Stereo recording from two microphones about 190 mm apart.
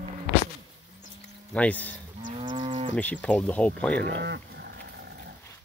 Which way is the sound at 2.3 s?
35° right (ahead or behind).